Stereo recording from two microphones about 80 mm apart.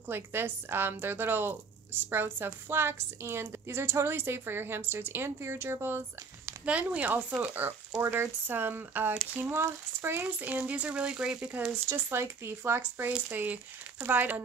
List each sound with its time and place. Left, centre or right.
0.1 s a woman's voice: right
6.6 s a woman's voice: centre
10.2 s speech: centre
11.7 s a woman's voice: right